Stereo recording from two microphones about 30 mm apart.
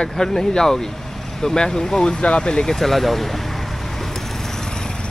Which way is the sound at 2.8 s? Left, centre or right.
Centre.